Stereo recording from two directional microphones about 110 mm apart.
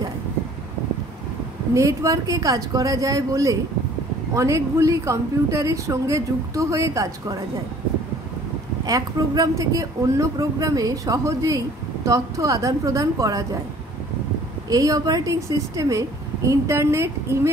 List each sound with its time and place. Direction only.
1.7 s a woman's voice: 30° right (ahead or behind)
8.8 s speech: 35° right (ahead or behind)
14.7 s a woman's voice: 30° right (ahead or behind)